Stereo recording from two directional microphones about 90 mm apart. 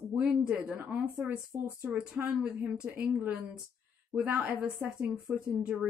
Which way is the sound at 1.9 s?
15° right (ahead or behind).